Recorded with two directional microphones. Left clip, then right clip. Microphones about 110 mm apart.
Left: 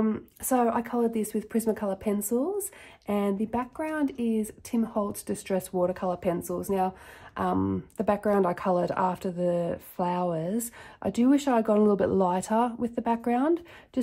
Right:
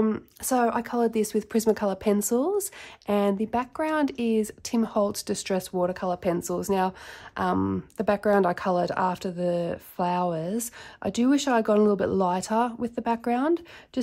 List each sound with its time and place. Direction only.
0.5 s speech: 10° right (ahead or behind)
1.1 s speech: 35° right (ahead or behind)
3.1 s speech: 20° right (ahead or behind)
3.7 s speech: 30° right (ahead or behind)
5.6 s speech: 15° right (ahead or behind)
6.2 s speech: 30° right (ahead or behind)
7.5 s speech: 20° right (ahead or behind)